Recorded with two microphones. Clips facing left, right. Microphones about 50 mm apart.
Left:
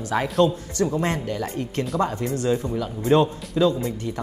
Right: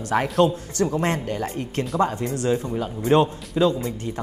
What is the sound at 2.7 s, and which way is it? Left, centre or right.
Speech, right.